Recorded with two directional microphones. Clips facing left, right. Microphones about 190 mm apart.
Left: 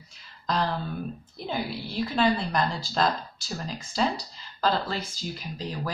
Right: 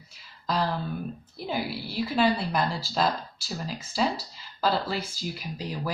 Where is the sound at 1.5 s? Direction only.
5° right (ahead or behind).